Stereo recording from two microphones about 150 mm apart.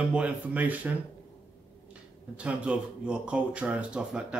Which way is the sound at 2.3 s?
10° right (ahead or behind).